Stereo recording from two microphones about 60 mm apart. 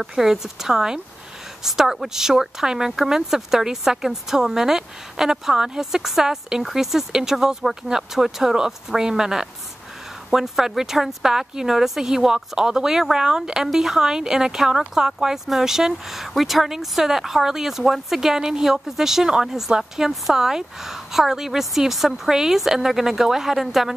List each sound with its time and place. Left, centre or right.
0.0 s speech: centre